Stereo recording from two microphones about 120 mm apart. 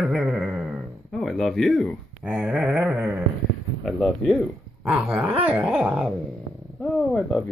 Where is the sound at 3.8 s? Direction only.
5° left (ahead or behind).